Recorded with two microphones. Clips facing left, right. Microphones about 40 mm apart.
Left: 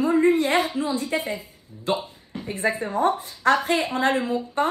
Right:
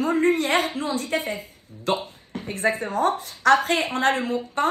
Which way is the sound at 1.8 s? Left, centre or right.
Right.